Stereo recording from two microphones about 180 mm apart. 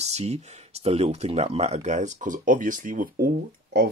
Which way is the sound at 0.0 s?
35° right (ahead or behind).